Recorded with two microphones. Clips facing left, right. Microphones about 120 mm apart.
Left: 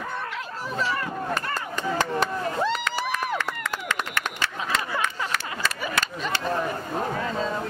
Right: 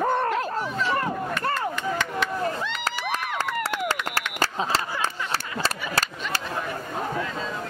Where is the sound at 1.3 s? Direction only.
35° left (ahead or behind).